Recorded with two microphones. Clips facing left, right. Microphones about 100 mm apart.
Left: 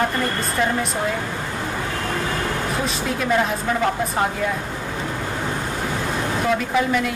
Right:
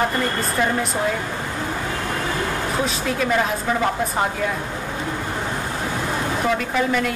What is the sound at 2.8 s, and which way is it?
Speech, centre (ahead or behind).